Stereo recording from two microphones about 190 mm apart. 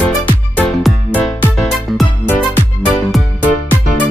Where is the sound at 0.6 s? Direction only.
Centre (ahead or behind).